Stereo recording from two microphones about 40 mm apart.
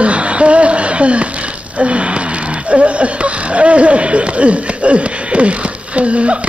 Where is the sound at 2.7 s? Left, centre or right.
Right.